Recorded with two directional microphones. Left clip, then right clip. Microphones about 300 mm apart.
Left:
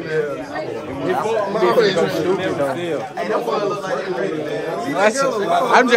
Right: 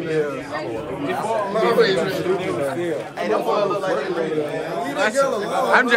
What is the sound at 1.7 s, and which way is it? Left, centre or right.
Speech, centre.